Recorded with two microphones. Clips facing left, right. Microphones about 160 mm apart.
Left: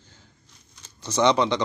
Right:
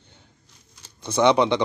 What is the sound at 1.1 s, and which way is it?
Speech, 10° right (ahead or behind).